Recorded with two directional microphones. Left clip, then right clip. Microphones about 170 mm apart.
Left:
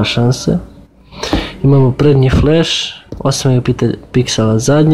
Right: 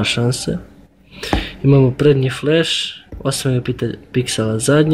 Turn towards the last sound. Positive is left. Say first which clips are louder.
# left 3 dB
turn(degrees=15)  # may be behind; listen again after turning